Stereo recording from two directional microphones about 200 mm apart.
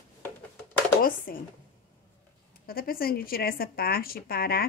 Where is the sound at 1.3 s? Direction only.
45° left (ahead or behind).